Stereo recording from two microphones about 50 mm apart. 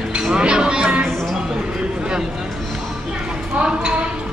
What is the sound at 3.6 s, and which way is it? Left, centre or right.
Speech, centre.